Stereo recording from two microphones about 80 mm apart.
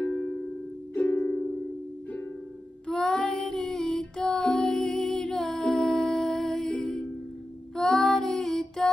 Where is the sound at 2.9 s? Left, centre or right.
Centre.